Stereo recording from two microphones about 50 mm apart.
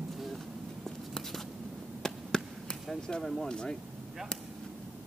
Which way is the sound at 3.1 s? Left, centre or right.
Centre.